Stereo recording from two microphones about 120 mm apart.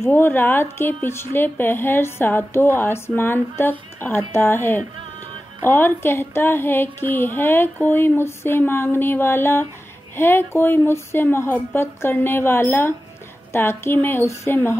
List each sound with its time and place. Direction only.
0.0 s a woman's voice: 20° left (ahead or behind)